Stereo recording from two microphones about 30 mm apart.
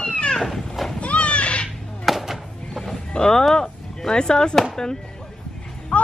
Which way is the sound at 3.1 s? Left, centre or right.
Left.